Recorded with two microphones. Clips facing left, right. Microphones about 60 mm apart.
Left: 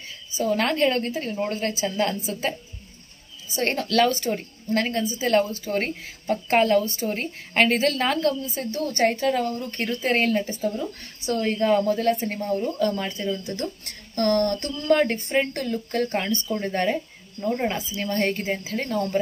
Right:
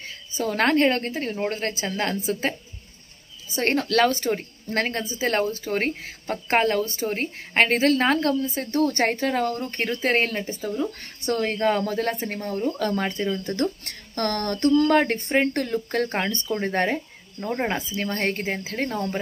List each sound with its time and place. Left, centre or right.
0.5 s a woman's voice: right
10.8 s speech: right
12.1 s a woman's voice: right